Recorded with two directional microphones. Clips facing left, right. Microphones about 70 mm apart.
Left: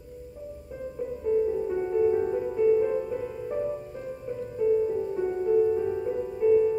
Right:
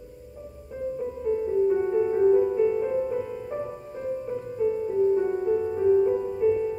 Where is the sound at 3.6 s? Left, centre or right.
Centre.